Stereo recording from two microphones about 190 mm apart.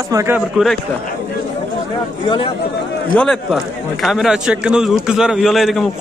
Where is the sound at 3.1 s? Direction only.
5° left (ahead or behind).